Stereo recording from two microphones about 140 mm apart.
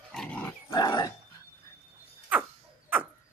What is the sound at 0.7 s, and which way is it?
Dog, 30° left (ahead or behind).